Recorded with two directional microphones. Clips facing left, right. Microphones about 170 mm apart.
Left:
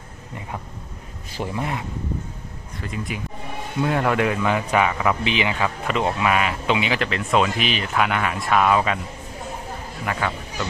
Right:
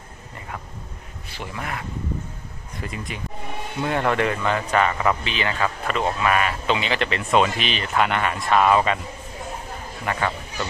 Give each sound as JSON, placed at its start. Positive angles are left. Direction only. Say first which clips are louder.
{"t": 1.5, "sound": "speech", "louder": "left 3 dB", "side_deg": 20}
{"t": 2.8, "sound": "speech", "louder": "even", "side_deg": -10}
{"t": 3.8, "sound": "speech", "louder": "left 1 dB", "side_deg": 5}
{"t": 10.0, "sound": "a man's voice", "louder": "right 1 dB", "side_deg": 0}